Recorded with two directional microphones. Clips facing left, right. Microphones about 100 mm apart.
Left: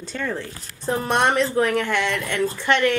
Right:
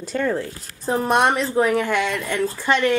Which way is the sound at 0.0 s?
10° right (ahead or behind).